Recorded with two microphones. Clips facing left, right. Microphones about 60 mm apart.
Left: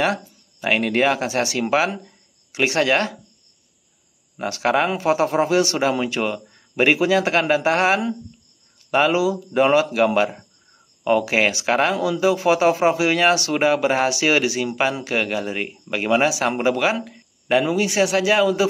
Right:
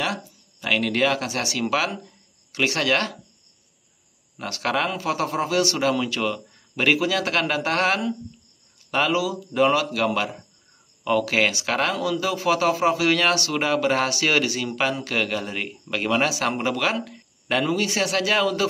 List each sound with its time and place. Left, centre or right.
0.0 s speech: left
4.4 s a man's voice: left